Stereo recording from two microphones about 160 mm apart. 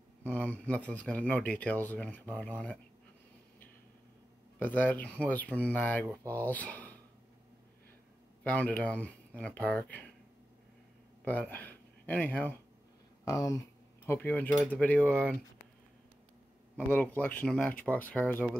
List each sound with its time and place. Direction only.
0.3 s speech: 10° left (ahead or behind)
4.6 s speech: 10° left (ahead or behind)
8.5 s speech: 10° left (ahead or behind)
11.2 s speech: 10° left (ahead or behind)
13.2 s speech: 20° left (ahead or behind); by 15.2 s 5° left (ahead or behind)
16.7 s speech: 10° left (ahead or behind)